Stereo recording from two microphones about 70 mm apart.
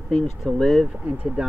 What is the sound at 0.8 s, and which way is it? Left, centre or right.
Speech, centre.